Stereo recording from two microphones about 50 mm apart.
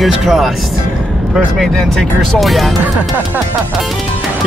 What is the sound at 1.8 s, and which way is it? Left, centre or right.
Speech, centre.